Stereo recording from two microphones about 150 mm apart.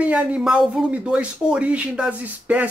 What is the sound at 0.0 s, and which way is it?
Speech, 10° right (ahead or behind).